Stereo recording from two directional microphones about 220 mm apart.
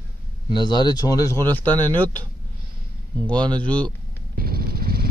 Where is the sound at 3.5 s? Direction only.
5° left (ahead or behind).